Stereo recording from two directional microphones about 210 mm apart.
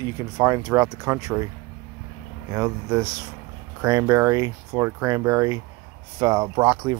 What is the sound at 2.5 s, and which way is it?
Speech, 15° right (ahead or behind).